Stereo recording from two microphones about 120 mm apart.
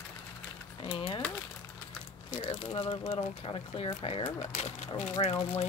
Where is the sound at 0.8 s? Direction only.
50° left (ahead or behind).